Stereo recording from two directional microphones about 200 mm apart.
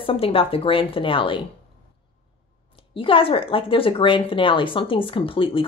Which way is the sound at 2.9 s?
25° left (ahead or behind).